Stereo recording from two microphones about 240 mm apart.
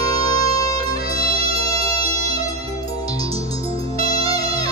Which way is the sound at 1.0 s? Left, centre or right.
Right.